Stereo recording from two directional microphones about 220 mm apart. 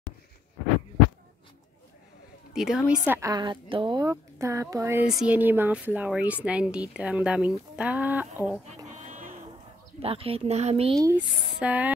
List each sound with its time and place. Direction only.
2.5 s a woman's voice: 5° right (ahead or behind)
8.8 s sheep: 30° right (ahead or behind)
10.0 s speech: 25° right (ahead or behind)
11.0 s a woman's voice: 10° right (ahead or behind)